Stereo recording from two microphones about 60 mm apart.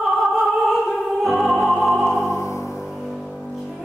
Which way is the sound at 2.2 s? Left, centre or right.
Left.